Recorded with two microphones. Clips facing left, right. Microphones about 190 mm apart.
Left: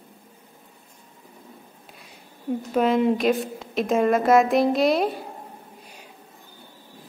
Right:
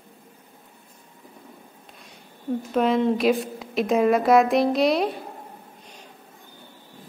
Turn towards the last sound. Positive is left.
turn(degrees=0)  # may be behind; listen again after turning